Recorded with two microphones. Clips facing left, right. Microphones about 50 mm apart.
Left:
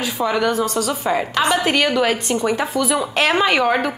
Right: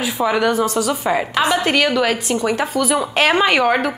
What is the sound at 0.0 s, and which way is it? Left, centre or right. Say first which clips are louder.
A woman's voice: right 2 dB; centre.